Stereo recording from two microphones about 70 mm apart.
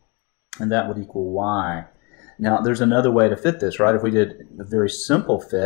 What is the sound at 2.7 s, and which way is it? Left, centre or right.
Speech, left.